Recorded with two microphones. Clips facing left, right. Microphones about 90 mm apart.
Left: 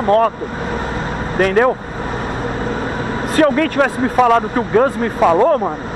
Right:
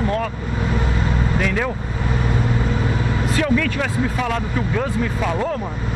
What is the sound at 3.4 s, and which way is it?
Speech, 50° left (ahead or behind).